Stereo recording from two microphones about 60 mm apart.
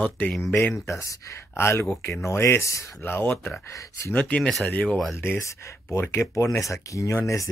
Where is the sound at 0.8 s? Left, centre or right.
Left.